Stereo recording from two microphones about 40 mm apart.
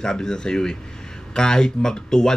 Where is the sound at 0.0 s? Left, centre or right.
Centre.